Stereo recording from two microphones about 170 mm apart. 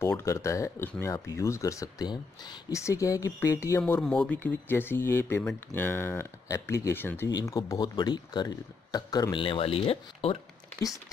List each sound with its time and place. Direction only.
0.0 s speech: 15° left (ahead or behind); by 10.4 s 35° left (ahead or behind)